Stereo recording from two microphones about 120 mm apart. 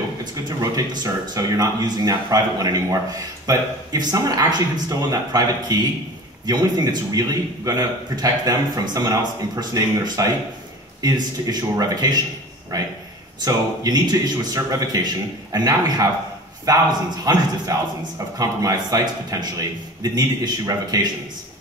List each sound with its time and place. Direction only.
0.2 s a man's voice: 35° right (ahead or behind)
11.5 s a man's voice: 30° right (ahead or behind)
13.4 s a man's voice: 35° right (ahead or behind)